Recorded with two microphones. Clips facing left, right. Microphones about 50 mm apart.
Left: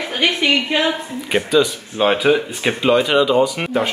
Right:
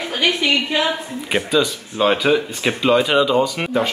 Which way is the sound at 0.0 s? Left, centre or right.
Left.